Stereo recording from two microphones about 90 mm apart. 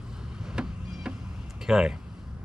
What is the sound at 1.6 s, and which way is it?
Speech, 5° right (ahead or behind).